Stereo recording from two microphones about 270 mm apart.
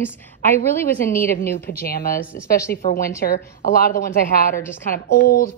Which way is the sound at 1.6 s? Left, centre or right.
Left.